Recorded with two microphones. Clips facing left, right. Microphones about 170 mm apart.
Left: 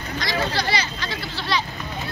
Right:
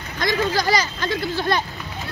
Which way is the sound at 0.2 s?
50° right (ahead or behind).